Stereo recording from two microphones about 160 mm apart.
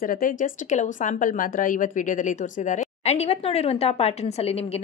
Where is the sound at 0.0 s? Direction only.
60° left (ahead or behind).